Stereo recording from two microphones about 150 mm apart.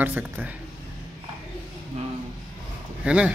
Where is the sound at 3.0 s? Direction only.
5° right (ahead or behind).